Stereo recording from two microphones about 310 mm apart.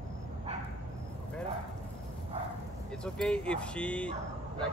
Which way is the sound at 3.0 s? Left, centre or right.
Centre.